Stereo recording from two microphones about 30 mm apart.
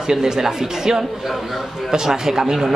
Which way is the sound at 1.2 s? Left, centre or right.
Centre.